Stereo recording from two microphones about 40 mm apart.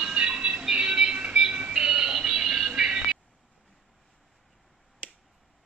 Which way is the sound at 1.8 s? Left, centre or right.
Centre.